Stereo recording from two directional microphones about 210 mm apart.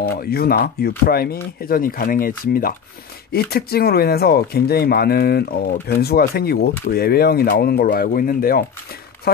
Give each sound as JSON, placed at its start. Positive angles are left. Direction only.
{"t": 0.0, "sound": "speech", "side_deg": 45}